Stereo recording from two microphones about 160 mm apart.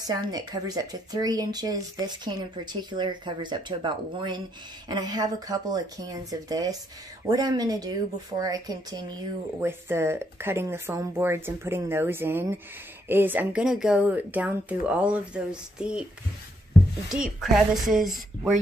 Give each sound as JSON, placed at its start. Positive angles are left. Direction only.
{"t": 0.0, "sound": "speech", "side_deg": -25}
{"t": 17.1, "sound": "a woman's voice", "side_deg": 0}